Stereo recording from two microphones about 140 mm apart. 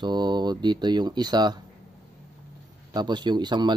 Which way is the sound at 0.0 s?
30° right (ahead or behind).